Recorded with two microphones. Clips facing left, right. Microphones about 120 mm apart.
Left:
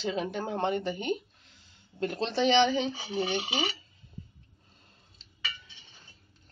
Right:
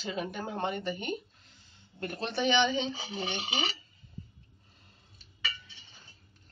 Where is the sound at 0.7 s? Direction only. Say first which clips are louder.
Left 3 dB; 25° left (ahead or behind).